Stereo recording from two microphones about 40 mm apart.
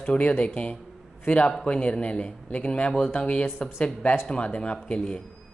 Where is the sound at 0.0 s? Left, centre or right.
Left.